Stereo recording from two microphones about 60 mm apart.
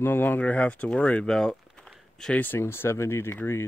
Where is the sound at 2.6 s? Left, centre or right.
Left.